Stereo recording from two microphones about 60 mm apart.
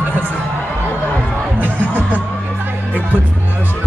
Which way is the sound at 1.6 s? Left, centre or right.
Right.